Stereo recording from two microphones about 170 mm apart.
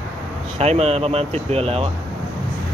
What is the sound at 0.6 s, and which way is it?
Speech, 40° right (ahead or behind).